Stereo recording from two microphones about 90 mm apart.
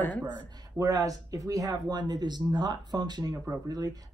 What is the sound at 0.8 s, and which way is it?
Speech, 40° right (ahead or behind).